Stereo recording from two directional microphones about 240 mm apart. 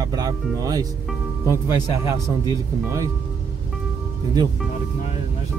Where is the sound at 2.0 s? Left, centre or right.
Centre.